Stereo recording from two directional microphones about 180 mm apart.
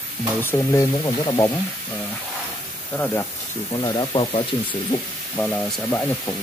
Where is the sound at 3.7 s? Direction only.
20° left (ahead or behind).